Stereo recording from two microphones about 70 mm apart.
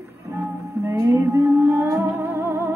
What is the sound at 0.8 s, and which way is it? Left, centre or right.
Music, right.